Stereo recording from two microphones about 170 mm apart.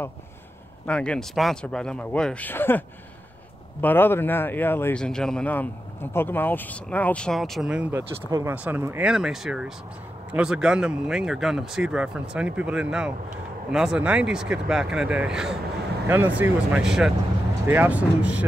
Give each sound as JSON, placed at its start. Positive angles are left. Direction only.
{"t": 0.8, "sound": "speech", "side_deg": 5}
{"t": 3.8, "sound": "speech", "side_deg": 10}
{"t": 8.3, "sound": "speech", "side_deg": -20}